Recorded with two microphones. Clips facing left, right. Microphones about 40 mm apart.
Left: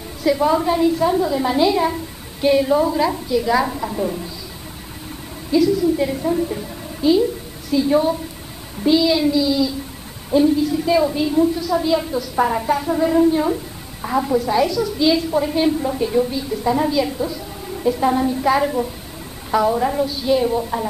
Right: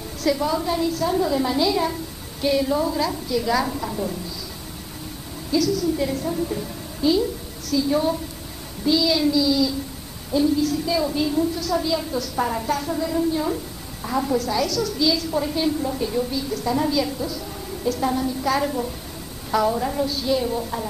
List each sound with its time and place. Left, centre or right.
0.2 s a woman's voice: centre
1.1 s a woman's voice: centre
1.5 s a woman's voice: left
5.5 s a woman's voice: left
7.7 s a woman's voice: left
14.0 s a woman's voice: centre